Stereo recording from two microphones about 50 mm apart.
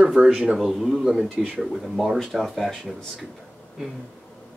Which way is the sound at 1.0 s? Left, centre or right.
Centre.